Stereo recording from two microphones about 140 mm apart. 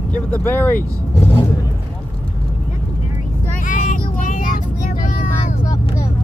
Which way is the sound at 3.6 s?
65° left (ahead or behind).